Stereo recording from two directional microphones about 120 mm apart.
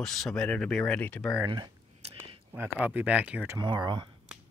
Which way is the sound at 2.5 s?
15° right (ahead or behind).